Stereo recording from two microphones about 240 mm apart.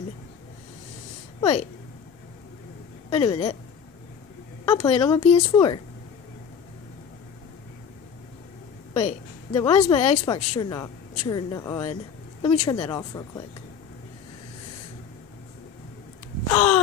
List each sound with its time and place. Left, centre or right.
1.4 s speech: left
3.1 s speech: left
4.7 s speech: left
8.9 s a sound: left
9.6 s a woman's voice: centre